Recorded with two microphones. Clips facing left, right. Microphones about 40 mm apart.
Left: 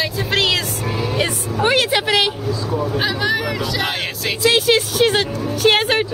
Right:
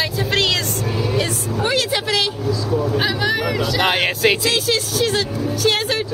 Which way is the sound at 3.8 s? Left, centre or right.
Right.